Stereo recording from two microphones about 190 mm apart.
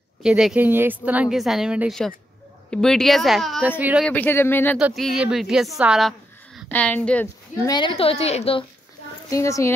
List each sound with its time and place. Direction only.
0.2 s a woman's voice: 5° right (ahead or behind)
4.0 s speech: 10° left (ahead or behind)
4.7 s a woman's voice: centre (ahead or behind)
7.6 s a woman's voice: 25° left (ahead or behind)
9.3 s speech: 15° left (ahead or behind)